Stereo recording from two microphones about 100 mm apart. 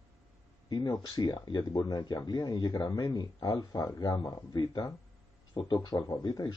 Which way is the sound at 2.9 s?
35° left (ahead or behind).